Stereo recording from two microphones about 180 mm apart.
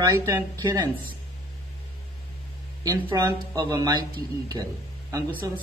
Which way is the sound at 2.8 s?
20° right (ahead or behind).